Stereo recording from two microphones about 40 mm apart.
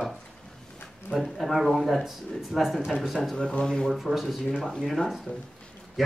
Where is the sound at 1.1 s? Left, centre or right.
Centre.